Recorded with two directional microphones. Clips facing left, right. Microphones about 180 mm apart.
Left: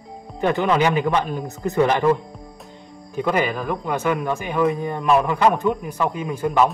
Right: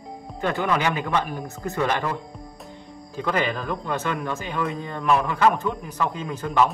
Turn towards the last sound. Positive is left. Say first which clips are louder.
# left 5 dB
turn(degrees=10)  # may be behind; listen again after turning